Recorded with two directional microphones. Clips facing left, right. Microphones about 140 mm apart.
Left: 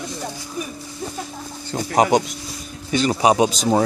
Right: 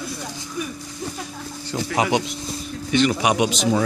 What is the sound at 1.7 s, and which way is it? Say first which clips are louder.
A man's voice: left 4 dB; 40° left (ahead or behind).